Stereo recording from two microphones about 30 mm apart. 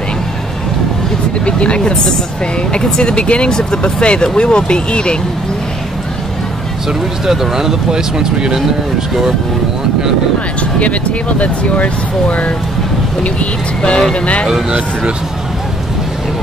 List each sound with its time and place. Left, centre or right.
1.4 s speech: left
3.4 s speech: left
6.9 s speech: centre
10.8 s speech: left
13.8 s speech: left